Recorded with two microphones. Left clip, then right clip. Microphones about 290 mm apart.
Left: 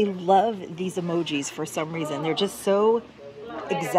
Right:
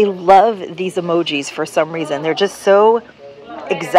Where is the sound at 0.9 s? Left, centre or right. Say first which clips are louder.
Right 10 dB; right.